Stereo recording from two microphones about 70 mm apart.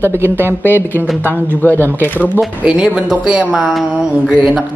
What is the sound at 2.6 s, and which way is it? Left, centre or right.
Speech, centre.